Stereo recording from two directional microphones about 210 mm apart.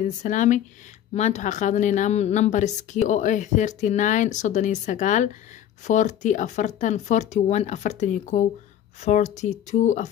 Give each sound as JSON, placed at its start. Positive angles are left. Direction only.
{"t": 0.0, "sound": "speech", "side_deg": 35}